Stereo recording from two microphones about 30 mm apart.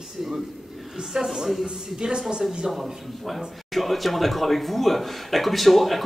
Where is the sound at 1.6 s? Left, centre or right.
Right.